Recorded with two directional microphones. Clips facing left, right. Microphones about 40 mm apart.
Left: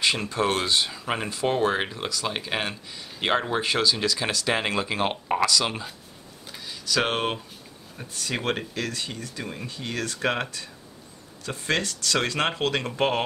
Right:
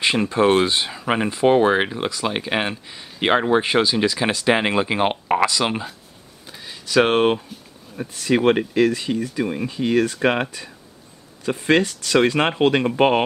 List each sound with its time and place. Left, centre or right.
0.0 s speech: right